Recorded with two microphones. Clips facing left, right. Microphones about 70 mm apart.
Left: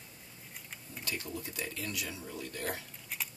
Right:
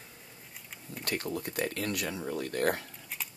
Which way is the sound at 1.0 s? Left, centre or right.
Right.